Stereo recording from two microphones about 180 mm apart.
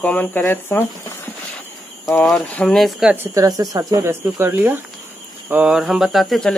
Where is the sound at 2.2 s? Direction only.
Centre (ahead or behind).